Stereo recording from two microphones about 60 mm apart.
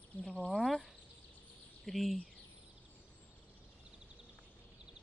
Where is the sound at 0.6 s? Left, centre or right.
Centre.